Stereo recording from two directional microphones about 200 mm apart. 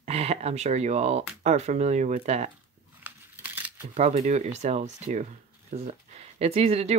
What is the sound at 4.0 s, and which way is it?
Speech, 35° right (ahead or behind).